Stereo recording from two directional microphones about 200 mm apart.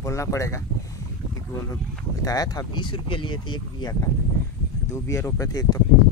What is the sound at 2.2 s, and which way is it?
Speech, 20° left (ahead or behind).